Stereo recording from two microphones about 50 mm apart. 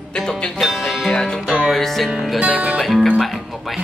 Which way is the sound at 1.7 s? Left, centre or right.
Centre.